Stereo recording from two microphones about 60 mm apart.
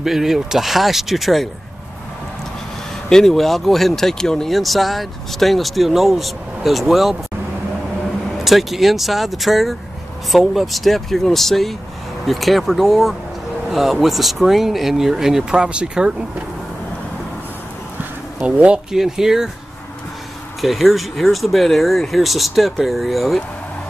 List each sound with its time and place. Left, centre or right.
0.0 s speech: centre
3.1 s speech: centre
8.5 s speech: centre
18.4 s speech: right
18.9 s speech: centre
20.6 s speech: centre